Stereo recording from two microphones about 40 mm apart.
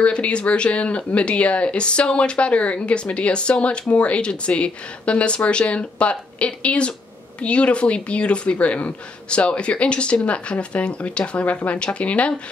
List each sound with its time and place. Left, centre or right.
0.0 s speech: left